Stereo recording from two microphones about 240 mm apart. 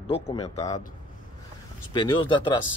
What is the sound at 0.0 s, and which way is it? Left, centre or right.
Speech, left.